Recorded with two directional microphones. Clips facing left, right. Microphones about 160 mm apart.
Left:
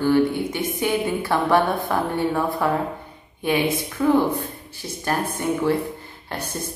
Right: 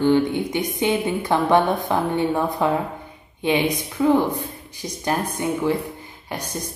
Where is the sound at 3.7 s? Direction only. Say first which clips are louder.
Right 1 dB; 15° right (ahead or behind).